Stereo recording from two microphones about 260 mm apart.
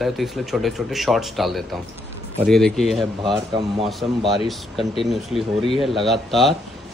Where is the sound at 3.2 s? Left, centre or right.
Centre.